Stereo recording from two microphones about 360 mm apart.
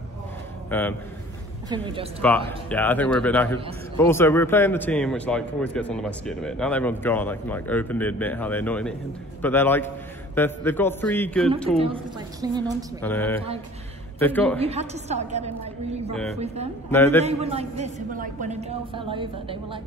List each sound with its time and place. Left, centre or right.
0.7 s a man's voice: centre
1.7 s a woman's voice: centre
2.2 s a man's voice: centre
11.8 s a woman's voice: centre
13.0 s a man's voice: centre
14.6 s a woman's voice: centre
16.9 s a man's voice: centre
17.2 s a woman's voice: centre